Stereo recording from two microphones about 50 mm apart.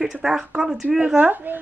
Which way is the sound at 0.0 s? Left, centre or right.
Centre.